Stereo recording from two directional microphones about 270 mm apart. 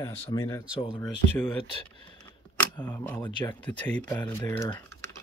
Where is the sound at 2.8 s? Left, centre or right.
Centre.